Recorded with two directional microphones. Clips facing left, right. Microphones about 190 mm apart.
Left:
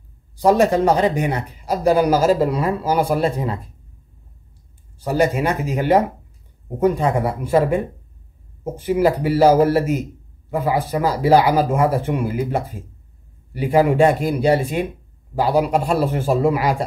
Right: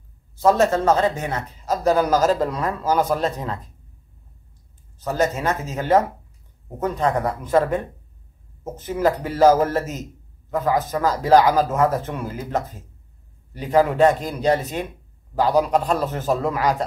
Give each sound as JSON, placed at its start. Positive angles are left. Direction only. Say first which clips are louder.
{"t": 0.4, "sound": "speech", "louder": "left 3 dB", "side_deg": 15}
{"t": 4.9, "sound": "speech", "louder": "left 4 dB", "side_deg": 10}